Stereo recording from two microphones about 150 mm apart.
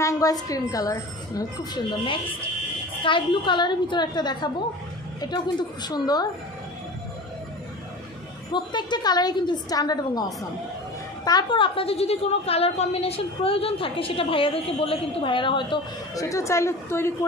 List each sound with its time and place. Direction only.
0.0 s a woman's voice: 25° left (ahead or behind)
8.5 s a woman's voice: 30° left (ahead or behind)
16.3 s a woman's voice: 20° left (ahead or behind)